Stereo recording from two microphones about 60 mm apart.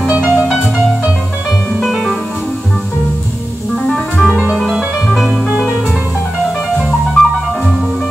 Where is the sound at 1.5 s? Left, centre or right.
Centre.